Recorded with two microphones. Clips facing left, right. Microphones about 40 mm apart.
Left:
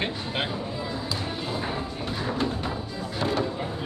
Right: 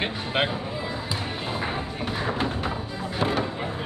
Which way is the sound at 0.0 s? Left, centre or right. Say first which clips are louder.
Right 3 dB; right.